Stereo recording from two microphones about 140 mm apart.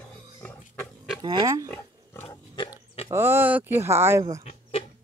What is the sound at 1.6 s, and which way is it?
Pig, 15° left (ahead or behind).